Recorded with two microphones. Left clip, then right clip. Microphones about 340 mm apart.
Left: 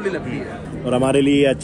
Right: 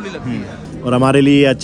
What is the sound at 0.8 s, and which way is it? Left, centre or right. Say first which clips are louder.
Speech: right 4 dB; right.